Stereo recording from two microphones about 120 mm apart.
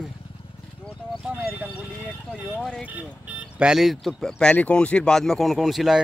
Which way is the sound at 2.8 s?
10° right (ahead or behind).